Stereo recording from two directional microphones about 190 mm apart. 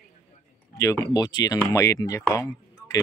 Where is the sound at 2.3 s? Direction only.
15° left (ahead or behind).